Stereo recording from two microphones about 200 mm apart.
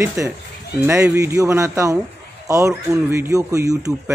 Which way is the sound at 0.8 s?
10° right (ahead or behind).